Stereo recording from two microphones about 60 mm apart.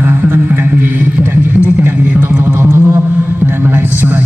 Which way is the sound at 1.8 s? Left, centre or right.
Right.